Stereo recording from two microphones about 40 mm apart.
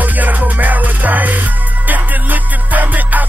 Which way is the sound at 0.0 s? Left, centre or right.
Right.